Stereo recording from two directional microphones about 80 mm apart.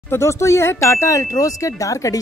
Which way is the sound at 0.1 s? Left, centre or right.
Left.